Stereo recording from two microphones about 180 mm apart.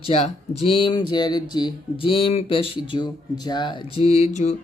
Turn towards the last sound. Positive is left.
turn(degrees=35)  # may be behind; listen again after turning